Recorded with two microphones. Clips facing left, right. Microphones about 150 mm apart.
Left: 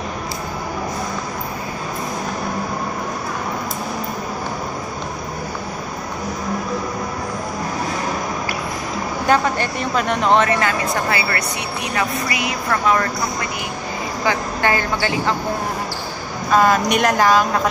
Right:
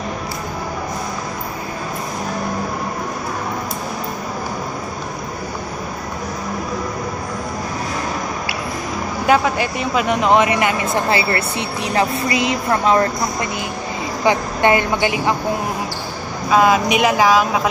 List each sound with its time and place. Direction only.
9.3 s speech: 5° right (ahead or behind); by 13.1 s 30° right (ahead or behind)
14.2 s speech: 20° right (ahead or behind)
16.4 s speech: 5° right (ahead or behind)